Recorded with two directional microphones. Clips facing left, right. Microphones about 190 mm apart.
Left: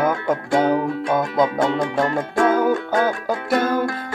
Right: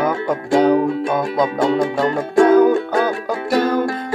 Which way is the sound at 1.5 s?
25° right (ahead or behind).